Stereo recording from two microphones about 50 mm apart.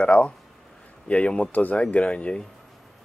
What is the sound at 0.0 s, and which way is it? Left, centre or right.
Speech, left.